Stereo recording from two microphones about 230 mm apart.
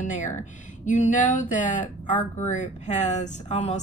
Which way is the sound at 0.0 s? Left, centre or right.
Left.